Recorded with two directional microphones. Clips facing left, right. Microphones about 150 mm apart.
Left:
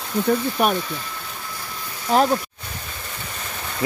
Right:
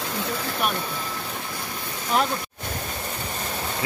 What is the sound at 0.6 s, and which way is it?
Speech, 45° left (ahead or behind).